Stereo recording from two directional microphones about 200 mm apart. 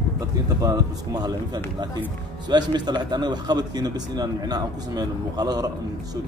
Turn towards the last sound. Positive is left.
turn(degrees=-20)  # may be behind; listen again after turning